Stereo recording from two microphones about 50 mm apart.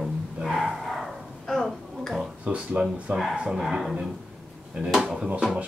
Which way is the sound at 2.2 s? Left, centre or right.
Right.